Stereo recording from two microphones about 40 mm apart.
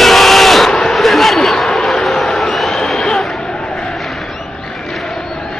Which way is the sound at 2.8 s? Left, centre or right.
Centre.